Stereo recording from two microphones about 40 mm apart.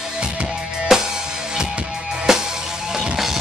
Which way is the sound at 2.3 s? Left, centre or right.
Centre.